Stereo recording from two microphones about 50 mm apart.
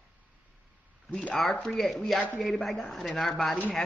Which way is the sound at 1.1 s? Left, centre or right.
Left.